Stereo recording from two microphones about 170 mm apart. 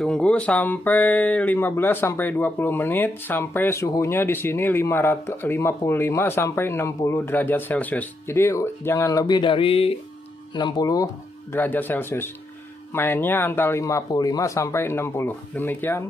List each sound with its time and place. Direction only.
0.0 s speech: 5° left (ahead or behind); by 11.1 s 20° left (ahead or behind)
11.5 s speech: 10° left (ahead or behind)